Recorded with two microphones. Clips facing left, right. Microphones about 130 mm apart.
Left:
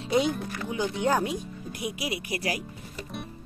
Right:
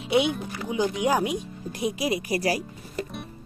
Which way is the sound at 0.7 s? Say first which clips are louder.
Right 3 dB; 15° right (ahead or behind).